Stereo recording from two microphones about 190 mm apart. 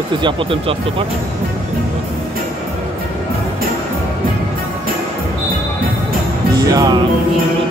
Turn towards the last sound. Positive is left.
turn(degrees=-20)  # may be behind; listen again after turning